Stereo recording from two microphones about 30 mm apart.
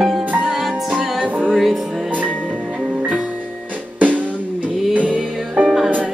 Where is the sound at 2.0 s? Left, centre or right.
Right.